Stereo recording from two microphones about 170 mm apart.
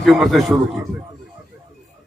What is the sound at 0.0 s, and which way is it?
Speech, centre (ahead or behind).